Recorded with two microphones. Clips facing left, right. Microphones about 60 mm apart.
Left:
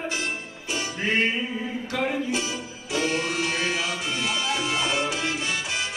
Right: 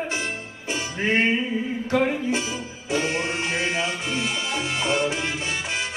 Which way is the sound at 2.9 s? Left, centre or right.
Right.